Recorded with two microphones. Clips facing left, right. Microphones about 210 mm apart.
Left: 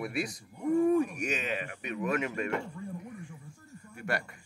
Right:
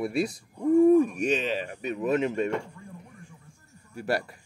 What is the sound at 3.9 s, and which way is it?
Speech, 35° right (ahead or behind).